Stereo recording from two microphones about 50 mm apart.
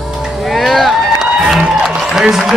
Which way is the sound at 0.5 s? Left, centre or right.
Centre.